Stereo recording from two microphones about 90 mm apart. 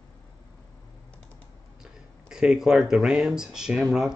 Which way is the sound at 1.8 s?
5° right (ahead or behind).